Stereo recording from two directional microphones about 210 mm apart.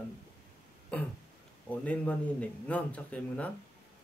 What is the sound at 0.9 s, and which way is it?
Speech, 5° left (ahead or behind).